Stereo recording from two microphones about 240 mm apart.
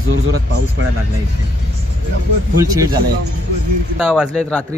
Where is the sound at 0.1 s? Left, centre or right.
Right.